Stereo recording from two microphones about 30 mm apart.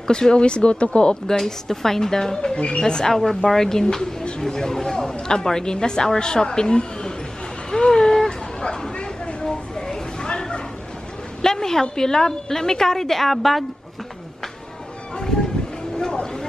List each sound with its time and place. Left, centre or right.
0.0 s speech: left
1.4 s a woman's voice: centre
2.5 s speech: left
2.8 s a woman's voice: left
7.7 s a sound: left
11.4 s a woman's voice: centre
16.0 s vehicle: left